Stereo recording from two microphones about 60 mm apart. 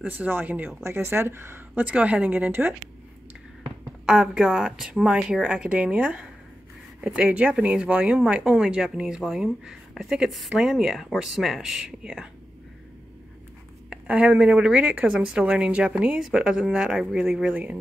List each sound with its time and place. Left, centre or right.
0.0 s speech: right
0.8 s speech: right
1.8 s speech: right
4.0 s speech: centre
13.8 s a woman's voice: right
15.0 s speech: centre